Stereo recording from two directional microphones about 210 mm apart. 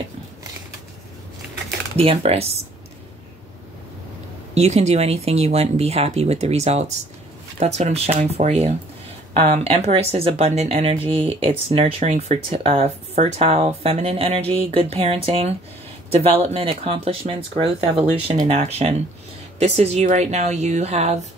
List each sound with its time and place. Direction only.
2.0 s speech: 30° right (ahead or behind)
4.6 s speech: 30° right (ahead or behind)